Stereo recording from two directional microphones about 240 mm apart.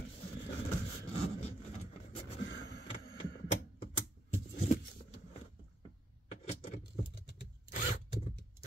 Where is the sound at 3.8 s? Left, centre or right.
Left.